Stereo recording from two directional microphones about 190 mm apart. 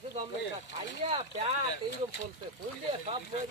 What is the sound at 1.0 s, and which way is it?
Speech, 30° right (ahead or behind).